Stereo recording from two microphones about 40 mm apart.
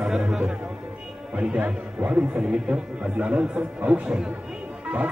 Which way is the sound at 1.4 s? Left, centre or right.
Right.